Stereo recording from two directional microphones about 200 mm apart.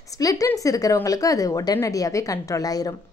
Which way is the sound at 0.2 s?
15° left (ahead or behind).